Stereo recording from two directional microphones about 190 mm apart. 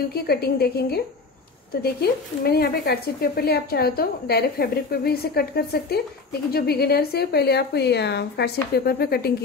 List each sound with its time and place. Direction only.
0.1 s speech: 55° left (ahead or behind)